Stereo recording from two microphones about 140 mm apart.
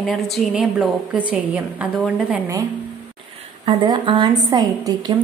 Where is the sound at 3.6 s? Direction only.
35° right (ahead or behind).